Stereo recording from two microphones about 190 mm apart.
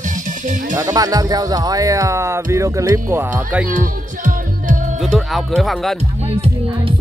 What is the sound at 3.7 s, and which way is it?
Music, 45° right (ahead or behind).